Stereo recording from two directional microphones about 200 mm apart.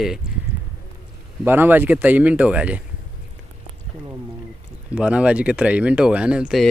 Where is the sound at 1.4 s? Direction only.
10° right (ahead or behind).